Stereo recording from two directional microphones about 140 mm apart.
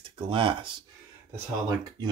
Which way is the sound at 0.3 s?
40° right (ahead or behind).